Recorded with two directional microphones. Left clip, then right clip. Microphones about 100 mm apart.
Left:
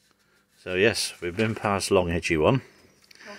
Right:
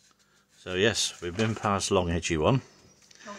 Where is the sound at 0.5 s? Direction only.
5° right (ahead or behind).